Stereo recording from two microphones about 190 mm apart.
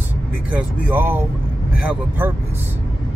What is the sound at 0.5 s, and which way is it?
Speech, 10° right (ahead or behind).